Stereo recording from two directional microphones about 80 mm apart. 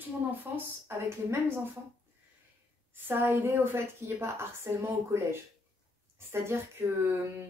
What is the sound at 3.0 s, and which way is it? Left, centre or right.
A woman's voice, right.